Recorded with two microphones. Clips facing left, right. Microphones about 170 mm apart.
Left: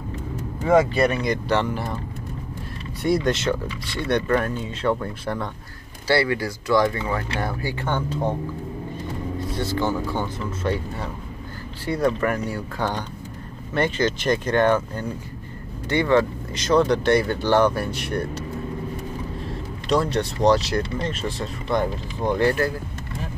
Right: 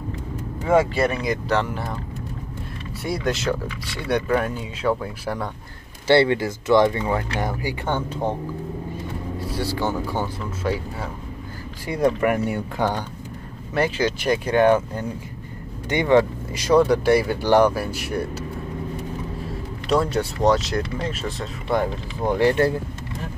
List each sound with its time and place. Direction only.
0.7 s speech: centre (ahead or behind)
3.0 s speech: centre (ahead or behind)
6.0 s speech: 25° right (ahead or behind)
9.4 s speech: 10° right (ahead or behind)
11.8 s speech: 15° right (ahead or behind)
19.9 s speech: 5° right (ahead or behind)